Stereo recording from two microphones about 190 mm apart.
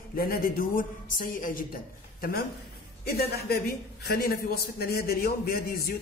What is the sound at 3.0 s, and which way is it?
A man's voice, 55° left (ahead or behind).